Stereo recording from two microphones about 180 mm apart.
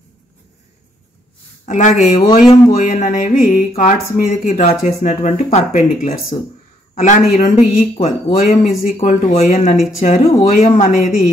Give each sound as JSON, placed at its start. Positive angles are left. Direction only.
{"t": 1.7, "sound": "speech", "side_deg": 40}